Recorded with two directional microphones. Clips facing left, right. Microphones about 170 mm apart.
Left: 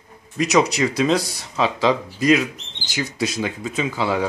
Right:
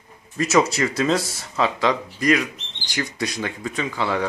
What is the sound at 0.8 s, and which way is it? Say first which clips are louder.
Speech: left 2 dB; 10° left (ahead or behind).